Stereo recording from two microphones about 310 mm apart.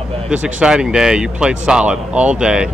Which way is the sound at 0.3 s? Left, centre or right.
Centre.